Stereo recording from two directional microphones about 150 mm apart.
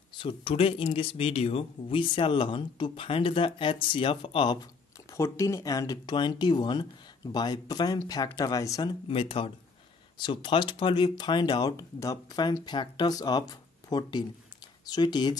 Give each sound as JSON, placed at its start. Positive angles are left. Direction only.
{"t": 0.2, "sound": "speech", "side_deg": 35}
{"t": 5.1, "sound": "speech", "side_deg": 20}
{"t": 9.0, "sound": "speech", "side_deg": 35}